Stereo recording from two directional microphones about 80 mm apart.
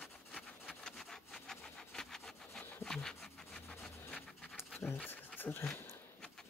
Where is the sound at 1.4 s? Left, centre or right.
Centre.